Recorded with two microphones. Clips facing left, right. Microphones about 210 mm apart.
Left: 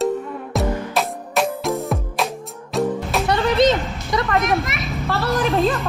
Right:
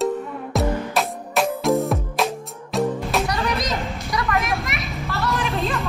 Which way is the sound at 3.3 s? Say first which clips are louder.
Left 8 dB; 30° left (ahead or behind).